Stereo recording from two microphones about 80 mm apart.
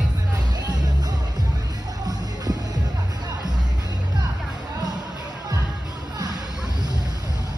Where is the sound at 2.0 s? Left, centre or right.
Right.